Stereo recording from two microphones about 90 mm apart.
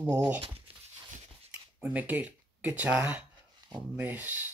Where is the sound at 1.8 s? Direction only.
15° right (ahead or behind).